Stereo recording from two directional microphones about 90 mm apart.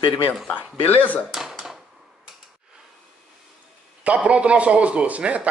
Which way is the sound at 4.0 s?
15° right (ahead or behind).